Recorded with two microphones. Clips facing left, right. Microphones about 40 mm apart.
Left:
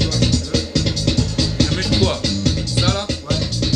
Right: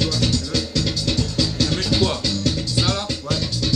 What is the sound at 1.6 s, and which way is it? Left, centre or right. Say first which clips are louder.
Music: left 3 dB; left.